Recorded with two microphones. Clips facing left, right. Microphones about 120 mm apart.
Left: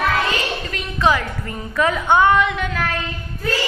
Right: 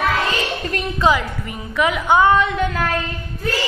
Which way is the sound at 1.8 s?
15° right (ahead or behind).